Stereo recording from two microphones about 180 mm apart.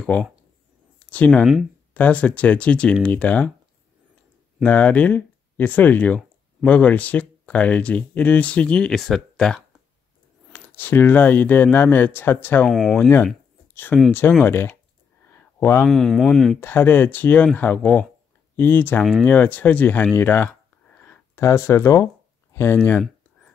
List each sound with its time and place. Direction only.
0.0 s speech: 5° left (ahead or behind)
0.9 s a sound: 10° left (ahead or behind)
1.4 s speech: 5° right (ahead or behind)
2.0 s speech: 10° left (ahead or behind)
4.6 s speech: 10° left (ahead or behind)
12.6 s speech: centre (ahead or behind)
12.9 s speech: 10° left (ahead or behind)
15.3 s a sound: 10° left (ahead or behind)
15.9 s speech: centre (ahead or behind)
16.5 s speech: 10° left (ahead or behind)
20.2 s a sound: 10° left (ahead or behind)